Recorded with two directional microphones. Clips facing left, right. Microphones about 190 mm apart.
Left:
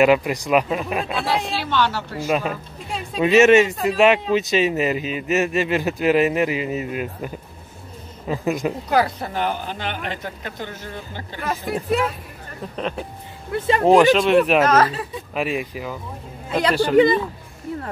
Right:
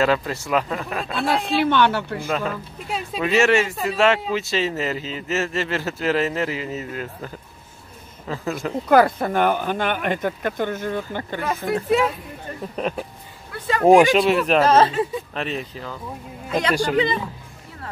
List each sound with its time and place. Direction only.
0.0 s speech: 15° left (ahead or behind)
1.3 s speech: 55° right (ahead or behind)
3.2 s speech: 20° left (ahead or behind)
8.8 s speech: 50° right (ahead or behind)
11.4 s speech: centre (ahead or behind)
13.5 s speech: 25° left (ahead or behind)
13.8 s speech: 10° right (ahead or behind)
14.6 s speech: 30° right (ahead or behind)
15.3 s speech: 10° left (ahead or behind)
16.9 s speech: 50° left (ahead or behind)